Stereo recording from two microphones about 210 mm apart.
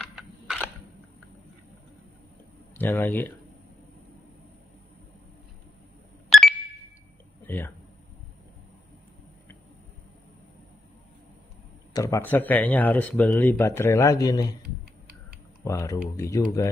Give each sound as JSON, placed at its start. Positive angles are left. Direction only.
{"t": 0.0, "sound": "a sound", "side_deg": 0}
{"t": 2.7, "sound": "speech", "side_deg": 10}
{"t": 6.3, "sound": "a sound", "side_deg": 0}
{"t": 7.4, "sound": "speech", "side_deg": 10}
{"t": 11.9, "sound": "speech", "side_deg": 15}
{"t": 15.6, "sound": "speech", "side_deg": 15}